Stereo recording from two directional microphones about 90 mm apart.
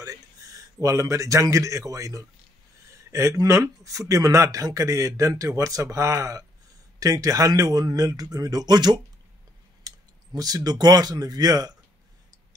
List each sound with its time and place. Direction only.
0.0 s speech: 40° right (ahead or behind)